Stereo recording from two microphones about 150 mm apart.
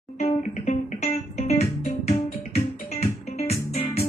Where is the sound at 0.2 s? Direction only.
50° left (ahead or behind).